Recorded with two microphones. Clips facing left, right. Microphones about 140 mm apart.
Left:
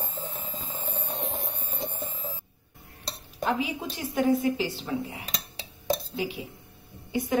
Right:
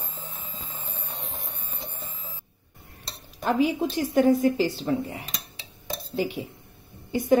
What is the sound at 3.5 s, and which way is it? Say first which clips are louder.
A woman's voice: right 8 dB; 45° right (ahead or behind).